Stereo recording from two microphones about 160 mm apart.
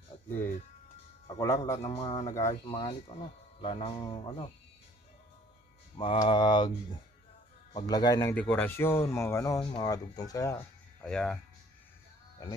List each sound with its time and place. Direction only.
1.4 s speech: 20° left (ahead or behind)
1.9 s speech: 30° left (ahead or behind)
2.2 s speech: 20° left (ahead or behind)
2.7 s speech: 30° left (ahead or behind)
5.9 s speech: 35° left (ahead or behind)
7.7 s speech: 25° left (ahead or behind)
11.1 s speech: 5° left (ahead or behind)
12.4 s speech: 20° left (ahead or behind)